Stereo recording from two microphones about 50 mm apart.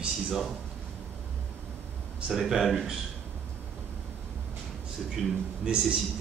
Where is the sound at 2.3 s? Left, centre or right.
Centre.